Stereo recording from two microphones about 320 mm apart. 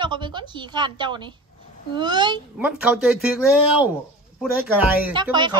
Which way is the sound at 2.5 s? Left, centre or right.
Centre.